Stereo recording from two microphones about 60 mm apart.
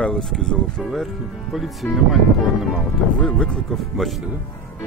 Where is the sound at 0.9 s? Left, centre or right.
Centre.